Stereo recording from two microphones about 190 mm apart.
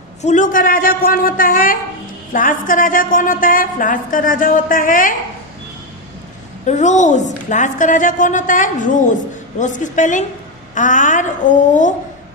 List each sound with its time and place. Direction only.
0.2 s a woman's voice: 40° left (ahead or behind)
6.6 s a woman's voice: 40° left (ahead or behind)